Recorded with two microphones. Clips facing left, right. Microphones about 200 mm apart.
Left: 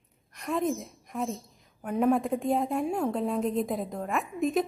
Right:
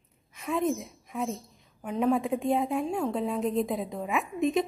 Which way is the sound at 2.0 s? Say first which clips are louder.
Even; centre (ahead or behind).